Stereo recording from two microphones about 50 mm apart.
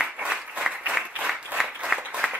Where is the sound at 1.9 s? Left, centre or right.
Centre.